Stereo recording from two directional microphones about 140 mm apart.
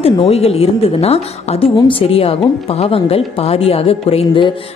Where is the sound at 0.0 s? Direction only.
45° left (ahead or behind).